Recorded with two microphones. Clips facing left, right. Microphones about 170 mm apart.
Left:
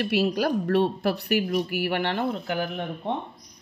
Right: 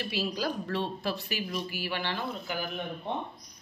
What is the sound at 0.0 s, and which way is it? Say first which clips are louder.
Speech: left 8 dB; 65° left (ahead or behind).